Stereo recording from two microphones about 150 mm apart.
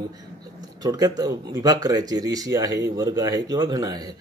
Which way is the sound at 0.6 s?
25° right (ahead or behind).